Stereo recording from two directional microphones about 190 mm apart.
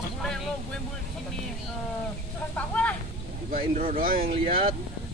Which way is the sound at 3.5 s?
50° right (ahead or behind).